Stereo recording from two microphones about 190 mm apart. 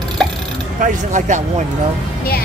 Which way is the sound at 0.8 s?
40° right (ahead or behind).